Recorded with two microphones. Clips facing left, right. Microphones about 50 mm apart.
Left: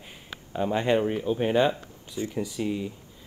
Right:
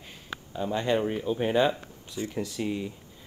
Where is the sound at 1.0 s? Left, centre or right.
Centre.